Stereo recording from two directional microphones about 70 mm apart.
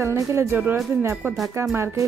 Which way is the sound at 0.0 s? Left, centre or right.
Right.